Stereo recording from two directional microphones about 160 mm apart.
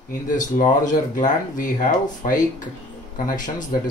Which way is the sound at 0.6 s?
55° left (ahead or behind).